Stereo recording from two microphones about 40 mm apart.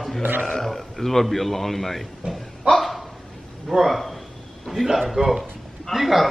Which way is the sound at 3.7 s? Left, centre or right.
Centre.